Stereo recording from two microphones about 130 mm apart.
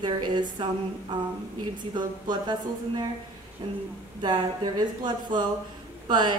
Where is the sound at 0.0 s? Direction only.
35° right (ahead or behind).